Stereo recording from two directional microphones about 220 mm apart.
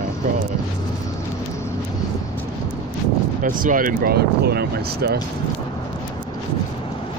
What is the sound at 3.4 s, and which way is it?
Speech, 40° right (ahead or behind).